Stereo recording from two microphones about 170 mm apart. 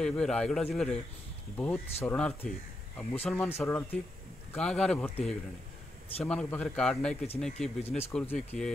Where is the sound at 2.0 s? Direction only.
5° left (ahead or behind).